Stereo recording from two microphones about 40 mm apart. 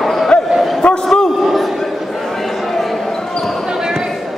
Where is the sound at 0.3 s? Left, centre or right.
Left.